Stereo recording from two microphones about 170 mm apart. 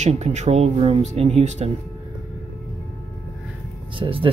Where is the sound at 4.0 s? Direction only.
30° right (ahead or behind).